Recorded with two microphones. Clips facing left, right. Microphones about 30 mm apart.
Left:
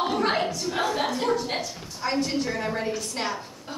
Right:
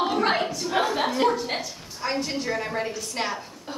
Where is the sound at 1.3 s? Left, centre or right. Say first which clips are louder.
Left 1 dB; centre.